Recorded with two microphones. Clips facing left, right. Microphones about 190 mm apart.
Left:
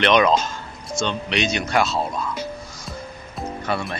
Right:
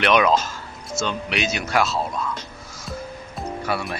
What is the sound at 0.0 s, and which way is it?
Speech, 5° right (ahead or behind).